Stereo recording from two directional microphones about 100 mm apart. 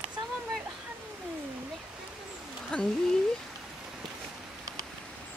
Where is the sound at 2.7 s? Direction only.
10° left (ahead or behind).